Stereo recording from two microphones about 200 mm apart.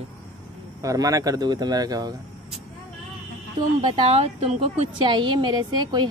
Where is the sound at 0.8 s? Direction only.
15° right (ahead or behind).